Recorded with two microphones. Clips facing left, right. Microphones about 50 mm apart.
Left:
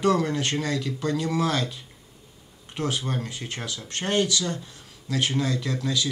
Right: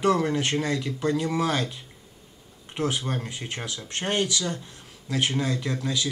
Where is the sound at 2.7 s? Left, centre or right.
Right.